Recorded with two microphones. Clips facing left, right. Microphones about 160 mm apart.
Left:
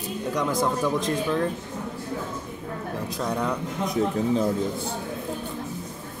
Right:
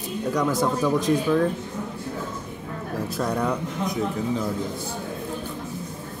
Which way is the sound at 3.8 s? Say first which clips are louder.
Left 3 dB; 30° left (ahead or behind).